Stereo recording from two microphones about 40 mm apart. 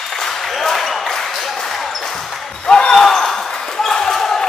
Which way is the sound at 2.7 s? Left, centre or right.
Left.